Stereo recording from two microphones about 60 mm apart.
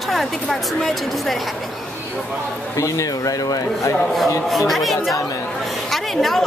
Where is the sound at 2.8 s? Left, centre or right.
Left.